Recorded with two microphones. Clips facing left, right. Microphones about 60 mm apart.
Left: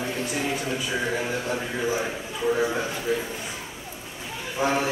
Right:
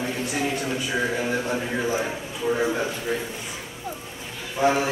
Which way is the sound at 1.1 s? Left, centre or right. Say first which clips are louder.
Right 2 dB; centre.